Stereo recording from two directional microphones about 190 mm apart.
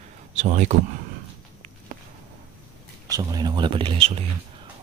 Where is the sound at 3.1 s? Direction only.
20° right (ahead or behind).